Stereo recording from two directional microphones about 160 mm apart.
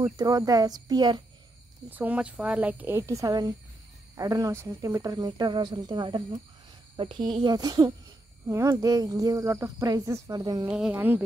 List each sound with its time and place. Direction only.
0.0 s speech: 20° right (ahead or behind)
1.9 s speech: 10° right (ahead or behind)
10.7 s speech: 5° right (ahead or behind)